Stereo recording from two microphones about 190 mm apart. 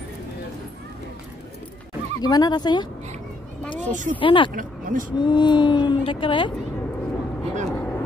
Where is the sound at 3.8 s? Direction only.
40° right (ahead or behind).